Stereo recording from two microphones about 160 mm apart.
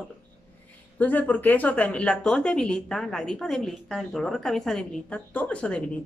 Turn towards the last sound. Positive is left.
turn(degrees=5)  # may be behind; listen again after turning